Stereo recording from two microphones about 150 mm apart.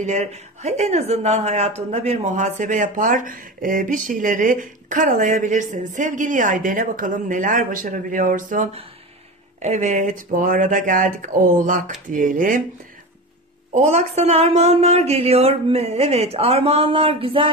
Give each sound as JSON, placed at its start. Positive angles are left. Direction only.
{"t": 0.0, "sound": "a woman's voice", "side_deg": -50}
{"t": 9.6, "sound": "a woman's voice", "side_deg": -50}
{"t": 13.7, "sound": "speech", "side_deg": -50}